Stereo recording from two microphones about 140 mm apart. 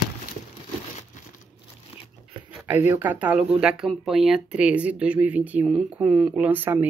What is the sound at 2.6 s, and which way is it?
Speech, 15° right (ahead or behind).